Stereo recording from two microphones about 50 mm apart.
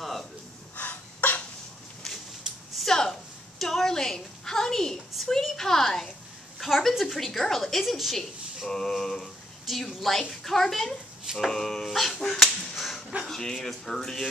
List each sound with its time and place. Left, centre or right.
0.0 s gasp: centre
0.7 s breathing: left
2.0 s a sound: centre
6.6 s a woman's voice: centre